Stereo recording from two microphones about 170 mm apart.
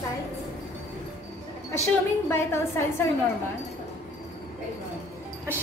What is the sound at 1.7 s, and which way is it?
A woman's voice, 15° left (ahead or behind).